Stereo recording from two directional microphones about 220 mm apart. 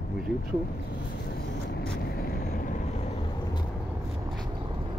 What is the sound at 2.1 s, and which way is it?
Vehicle, 45° left (ahead or behind).